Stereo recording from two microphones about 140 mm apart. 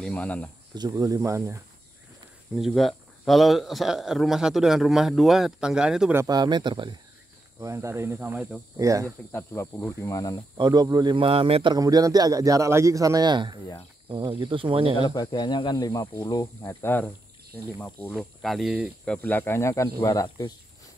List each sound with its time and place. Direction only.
0.0 s speech: 10° left (ahead or behind)
0.7 s a man's voice: 25° right (ahead or behind)
2.5 s speech: centre (ahead or behind)
6.1 s a man's voice: 30° right (ahead or behind)
7.6 s a man's voice: 20° right (ahead or behind)
9.3 s speech: 20° left (ahead or behind)
10.6 s a man's voice: 30° right (ahead or behind)
11.7 s a man's voice: 25° right (ahead or behind)
15.0 s speech: 30° left (ahead or behind)
16.8 s speech: 15° left (ahead or behind)
18.1 s speech: centre (ahead or behind)
19.1 s speech: 10° left (ahead or behind)